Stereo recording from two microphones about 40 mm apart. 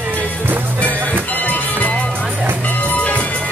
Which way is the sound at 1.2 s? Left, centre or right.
Left.